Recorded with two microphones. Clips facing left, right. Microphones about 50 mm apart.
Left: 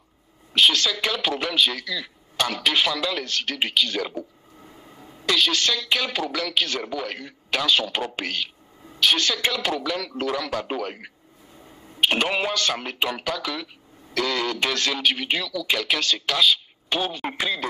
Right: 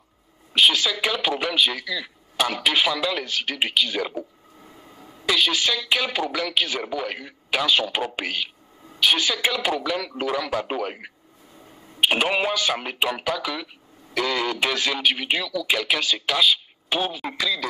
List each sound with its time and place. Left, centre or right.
0.5 s speech: centre
17.4 s speech: left